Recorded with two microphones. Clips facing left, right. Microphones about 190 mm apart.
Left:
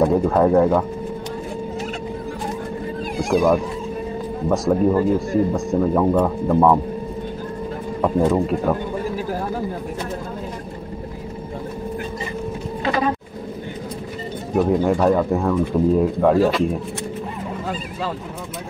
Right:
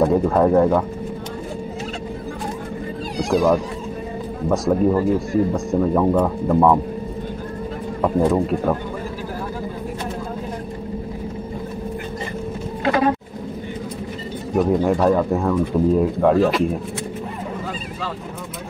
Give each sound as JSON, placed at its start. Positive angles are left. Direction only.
{"t": 0.0, "sound": "speech", "side_deg": 0}
{"t": 3.2, "sound": "speech", "side_deg": 0}
{"t": 8.0, "sound": "speech", "side_deg": 0}
{"t": 12.8, "sound": "a sound", "side_deg": -55}
{"t": 14.5, "sound": "speech", "side_deg": 0}